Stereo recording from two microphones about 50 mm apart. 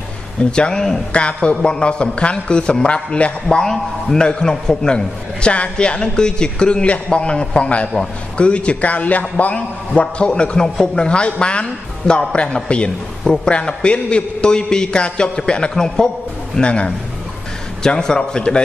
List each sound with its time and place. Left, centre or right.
0.5 s a man's voice: centre
3.4 s a man's voice: centre
16.5 s a man's voice: left
17.8 s a man's voice: centre